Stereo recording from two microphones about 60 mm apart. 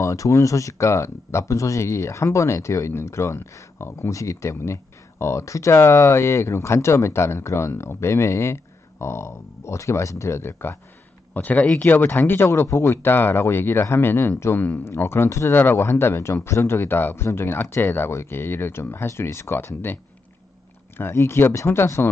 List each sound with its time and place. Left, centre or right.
0.0 s speech: left
4.1 s speech: left
5.8 s speech: left
11.3 s speech: left
15.5 s speech: left
21.0 s speech: left